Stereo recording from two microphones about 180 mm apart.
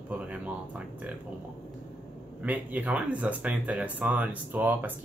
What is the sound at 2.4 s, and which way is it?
Speech, 10° right (ahead or behind).